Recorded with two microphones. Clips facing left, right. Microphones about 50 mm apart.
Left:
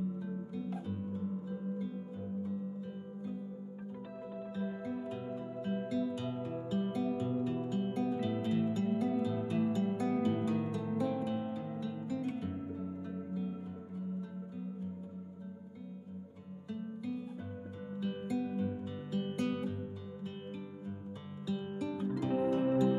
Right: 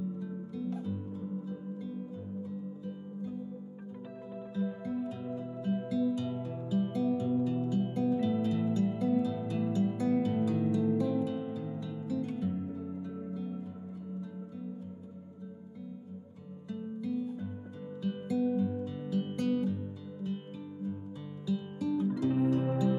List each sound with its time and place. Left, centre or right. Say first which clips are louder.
0.5 s music: right 3 dB; centre
4.8 s music: right 3 dB; centre
6.1 s music: right 2 dB; centre
16.6 s music: right 3 dB; centre